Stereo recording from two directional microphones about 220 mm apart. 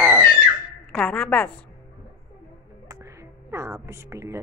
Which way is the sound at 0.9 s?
5° left (ahead or behind).